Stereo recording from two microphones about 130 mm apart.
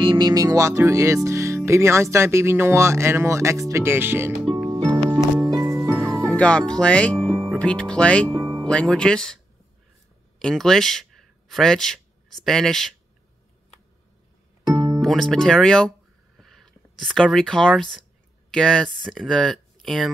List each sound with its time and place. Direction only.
0.0 s music: 35° right (ahead or behind)
1.7 s speech: 20° right (ahead or behind)
4.6 s music: 25° right (ahead or behind)
6.3 s speech: 10° left (ahead or behind)
8.3 s music: 30° right (ahead or behind)
8.6 s speech: 5° left (ahead or behind)
10.4 s speech: 5° left (ahead or behind)
14.7 s speech: centre (ahead or behind)
16.3 s a sound: centre (ahead or behind)
18.5 s speech: 5° left (ahead or behind)